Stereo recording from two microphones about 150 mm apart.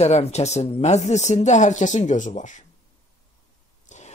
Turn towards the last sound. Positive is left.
turn(degrees=50)  # may be behind; listen again after turning